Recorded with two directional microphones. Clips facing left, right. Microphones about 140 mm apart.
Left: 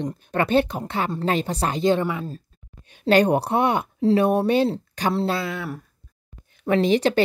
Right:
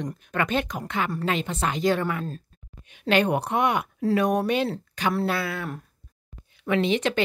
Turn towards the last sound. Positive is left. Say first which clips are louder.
# left 4 dB
turn(degrees=35)  # may be behind; listen again after turning